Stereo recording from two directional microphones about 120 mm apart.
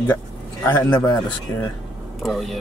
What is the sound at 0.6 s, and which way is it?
Speech, 20° left (ahead or behind).